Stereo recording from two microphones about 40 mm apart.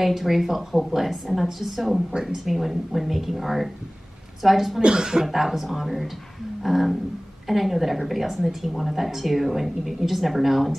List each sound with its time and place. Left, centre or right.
0.0 s a woman's voice: centre
4.8 s speech: centre
5.2 s a woman's voice: centre